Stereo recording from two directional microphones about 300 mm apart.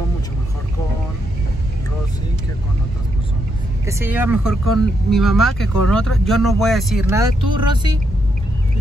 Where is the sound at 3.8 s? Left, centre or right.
Centre.